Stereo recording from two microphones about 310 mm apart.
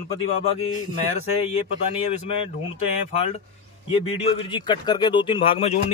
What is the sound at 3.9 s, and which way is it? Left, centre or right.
Speech, centre.